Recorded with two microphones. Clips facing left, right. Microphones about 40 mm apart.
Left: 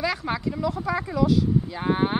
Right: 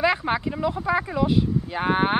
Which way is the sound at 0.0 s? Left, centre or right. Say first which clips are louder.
Right 4 dB; right.